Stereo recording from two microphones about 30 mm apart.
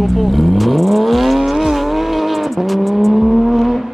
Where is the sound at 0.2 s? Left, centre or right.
Centre.